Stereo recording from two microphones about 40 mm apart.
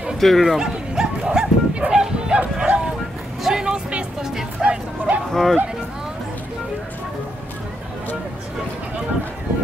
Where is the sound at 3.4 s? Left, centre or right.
Centre.